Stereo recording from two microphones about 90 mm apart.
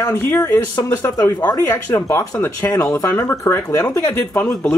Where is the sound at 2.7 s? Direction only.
35° left (ahead or behind).